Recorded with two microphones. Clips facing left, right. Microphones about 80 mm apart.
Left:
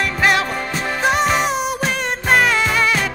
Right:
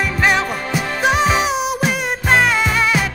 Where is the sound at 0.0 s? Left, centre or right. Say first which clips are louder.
Even; centre.